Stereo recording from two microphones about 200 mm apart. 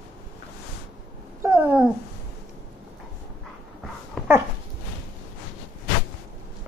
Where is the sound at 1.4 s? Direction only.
10° right (ahead or behind).